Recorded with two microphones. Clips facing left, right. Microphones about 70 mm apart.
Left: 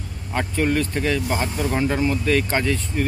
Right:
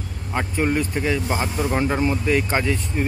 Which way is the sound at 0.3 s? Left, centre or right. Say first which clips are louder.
Even; centre.